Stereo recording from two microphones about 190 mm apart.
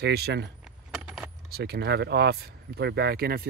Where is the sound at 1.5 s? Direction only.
60° right (ahead or behind).